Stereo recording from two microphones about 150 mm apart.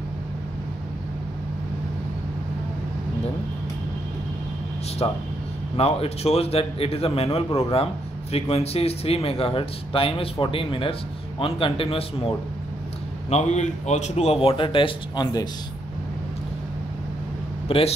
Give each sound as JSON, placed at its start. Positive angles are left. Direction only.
{"t": 5.0, "sound": "speech", "side_deg": 40}
{"t": 13.3, "sound": "a man's voice", "side_deg": 50}
{"t": 17.6, "sound": "speech", "side_deg": 40}